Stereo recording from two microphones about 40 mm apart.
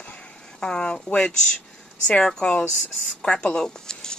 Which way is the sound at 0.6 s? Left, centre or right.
Centre.